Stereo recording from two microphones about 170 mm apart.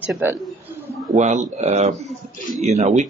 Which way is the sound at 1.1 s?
45° right (ahead or behind).